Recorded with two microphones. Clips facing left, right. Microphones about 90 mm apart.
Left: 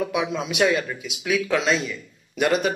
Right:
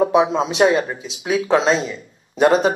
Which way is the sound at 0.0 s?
30° right (ahead or behind).